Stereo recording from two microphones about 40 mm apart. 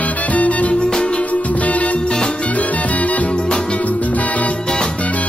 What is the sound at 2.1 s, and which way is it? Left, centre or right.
Music, centre.